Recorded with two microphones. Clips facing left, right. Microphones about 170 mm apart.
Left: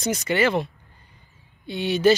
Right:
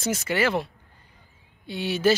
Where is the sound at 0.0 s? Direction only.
5° right (ahead or behind).